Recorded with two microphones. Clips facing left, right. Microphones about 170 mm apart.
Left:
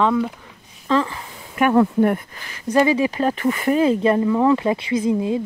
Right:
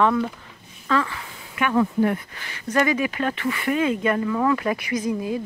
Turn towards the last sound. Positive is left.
turn(degrees=25)  # may be behind; listen again after turning